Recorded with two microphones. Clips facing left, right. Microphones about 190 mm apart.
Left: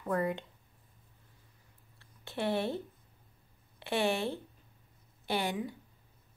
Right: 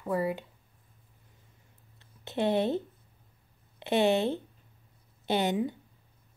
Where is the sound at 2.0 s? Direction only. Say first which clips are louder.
Right 6 dB; 20° right (ahead or behind).